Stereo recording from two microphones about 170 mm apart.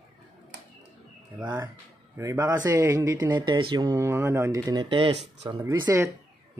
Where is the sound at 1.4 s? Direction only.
25° right (ahead or behind).